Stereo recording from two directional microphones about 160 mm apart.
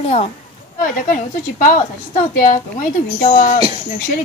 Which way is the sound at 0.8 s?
55° left (ahead or behind).